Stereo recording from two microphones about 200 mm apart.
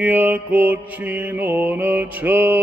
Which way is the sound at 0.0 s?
10° right (ahead or behind).